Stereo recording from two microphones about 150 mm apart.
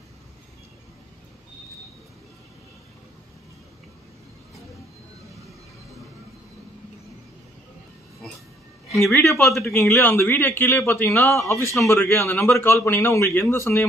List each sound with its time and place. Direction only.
9.2 s speech: centre (ahead or behind)
9.7 s a man's voice: 15° left (ahead or behind)